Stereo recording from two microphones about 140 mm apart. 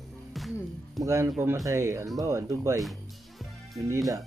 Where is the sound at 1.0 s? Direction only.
20° right (ahead or behind).